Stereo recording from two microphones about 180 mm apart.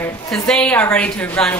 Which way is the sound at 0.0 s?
5° left (ahead or behind).